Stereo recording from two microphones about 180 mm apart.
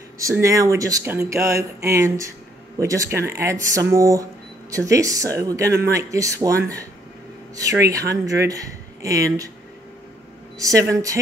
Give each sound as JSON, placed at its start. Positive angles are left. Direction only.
{"t": 0.2, "sound": "speech", "side_deg": -15}
{"t": 10.6, "sound": "speech", "side_deg": -15}